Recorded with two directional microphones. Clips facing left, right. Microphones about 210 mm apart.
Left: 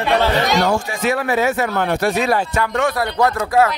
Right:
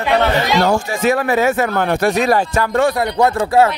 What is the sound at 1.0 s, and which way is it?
Speech, 45° right (ahead or behind).